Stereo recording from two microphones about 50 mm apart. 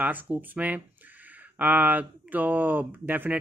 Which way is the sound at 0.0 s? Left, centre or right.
Right.